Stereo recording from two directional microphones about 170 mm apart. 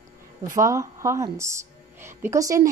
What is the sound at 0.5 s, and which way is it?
A woman's voice, 20° right (ahead or behind).